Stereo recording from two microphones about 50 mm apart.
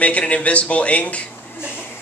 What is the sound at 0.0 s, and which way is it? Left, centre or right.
A man's voice, left.